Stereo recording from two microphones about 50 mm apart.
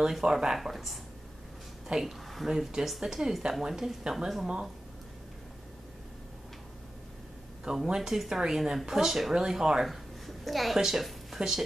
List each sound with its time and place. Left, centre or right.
0.0 s speech: centre
0.6 s speech: centre
1.9 s speech: centre
2.2 s a sound: centre
2.5 s speech: centre
7.6 s speech: centre
9.8 s a sound: centre
10.8 s speech: centre